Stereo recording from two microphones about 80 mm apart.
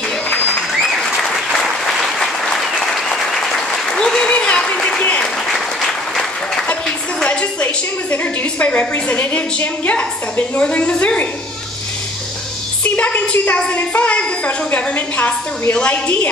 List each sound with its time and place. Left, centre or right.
0.8 s applause: centre
5.5 s applause: centre
7.2 s a woman's voice: centre
12.8 s a woman's voice: centre